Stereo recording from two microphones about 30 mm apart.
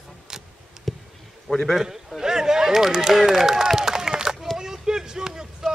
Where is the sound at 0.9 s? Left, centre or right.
Centre.